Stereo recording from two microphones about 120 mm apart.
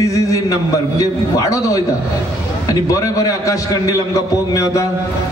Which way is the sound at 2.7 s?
30° left (ahead or behind).